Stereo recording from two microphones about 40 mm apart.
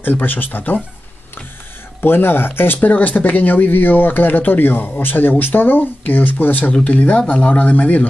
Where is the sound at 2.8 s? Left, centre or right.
Left.